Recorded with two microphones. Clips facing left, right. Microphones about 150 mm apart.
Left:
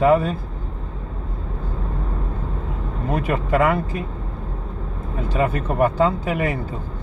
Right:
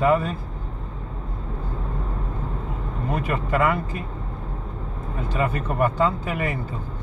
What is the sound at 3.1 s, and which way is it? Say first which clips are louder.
Speech: left 4 dB; 30° left (ahead or behind).